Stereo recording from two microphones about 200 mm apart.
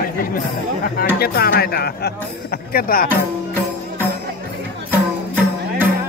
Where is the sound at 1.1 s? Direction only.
50° left (ahead or behind).